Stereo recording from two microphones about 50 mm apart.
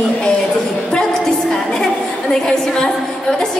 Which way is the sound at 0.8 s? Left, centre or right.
Centre.